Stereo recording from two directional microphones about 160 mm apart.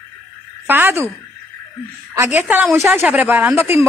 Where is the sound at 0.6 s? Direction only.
10° right (ahead or behind).